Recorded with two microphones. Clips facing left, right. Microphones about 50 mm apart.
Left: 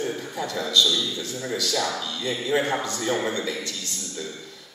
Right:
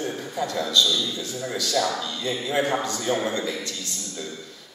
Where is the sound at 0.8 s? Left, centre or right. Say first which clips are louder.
Even; centre.